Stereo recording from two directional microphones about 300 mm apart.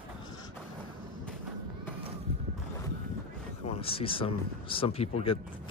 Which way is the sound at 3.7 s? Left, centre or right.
Centre.